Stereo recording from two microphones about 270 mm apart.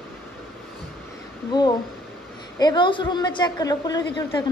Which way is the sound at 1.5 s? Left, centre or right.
Centre.